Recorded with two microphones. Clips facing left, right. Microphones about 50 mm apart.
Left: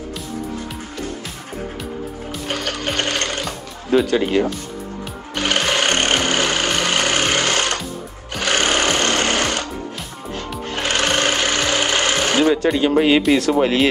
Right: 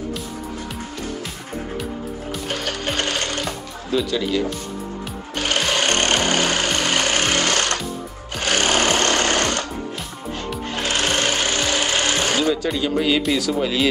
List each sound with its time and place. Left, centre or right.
2.5 s music: left
3.9 s speech: left
5.3 s music: left
5.6 s vehicle: left
6.9 s jackhammer: left
8.4 s sewing machine: left
10.8 s wood: left
12.1 s sewing machine: left
12.7 s speech: left